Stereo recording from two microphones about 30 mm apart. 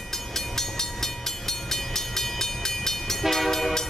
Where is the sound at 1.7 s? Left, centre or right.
Centre.